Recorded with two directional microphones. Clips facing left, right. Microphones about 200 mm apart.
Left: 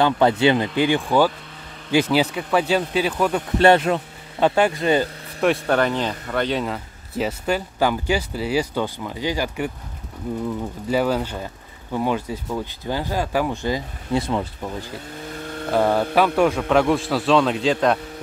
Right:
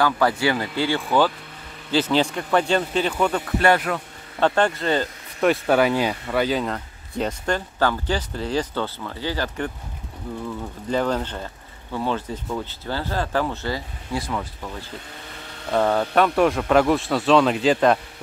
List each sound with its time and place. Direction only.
0.0 s a man's voice: 20° left (ahead or behind); by 3.4 s 5° left (ahead or behind)
3.5 s speech: 25° left (ahead or behind)
4.4 s speech: 10° left (ahead or behind)
5.4 s speech: 5° right (ahead or behind); by 10.4 s 20° left (ahead or behind)
10.9 s speech: 10° left (ahead or behind)
15.7 s a man's voice: 10° left (ahead or behind)